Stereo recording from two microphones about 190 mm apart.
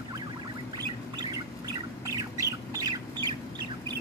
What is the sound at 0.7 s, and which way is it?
Bird, 20° right (ahead or behind).